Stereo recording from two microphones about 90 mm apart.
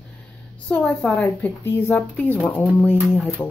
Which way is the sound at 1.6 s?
30° left (ahead or behind).